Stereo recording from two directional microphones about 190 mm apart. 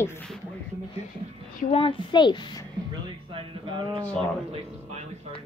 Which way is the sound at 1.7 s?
25° left (ahead or behind).